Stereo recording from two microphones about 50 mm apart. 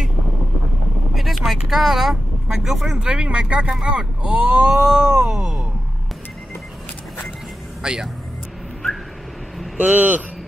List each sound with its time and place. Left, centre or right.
1.1 s vehicle: centre
3.1 s speech: centre
4.7 s a sound: centre
7.8 s speech: centre
9.8 s speech: right